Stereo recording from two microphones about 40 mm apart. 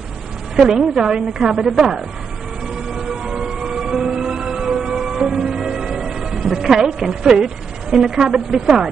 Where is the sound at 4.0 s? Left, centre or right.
Centre.